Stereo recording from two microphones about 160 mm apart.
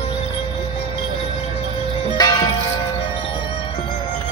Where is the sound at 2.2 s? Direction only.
25° left (ahead or behind).